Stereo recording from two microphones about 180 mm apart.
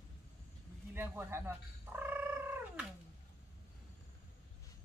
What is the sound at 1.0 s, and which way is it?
Speech, 15° right (ahead or behind).